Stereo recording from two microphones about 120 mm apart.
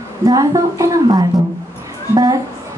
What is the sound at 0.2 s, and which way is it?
Speech, 35° right (ahead or behind).